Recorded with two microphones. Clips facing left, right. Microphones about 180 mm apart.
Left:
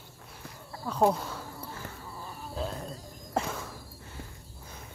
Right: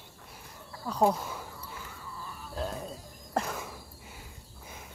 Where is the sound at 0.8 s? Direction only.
5° left (ahead or behind).